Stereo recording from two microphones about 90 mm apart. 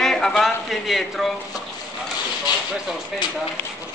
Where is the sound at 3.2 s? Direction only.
55° left (ahead or behind).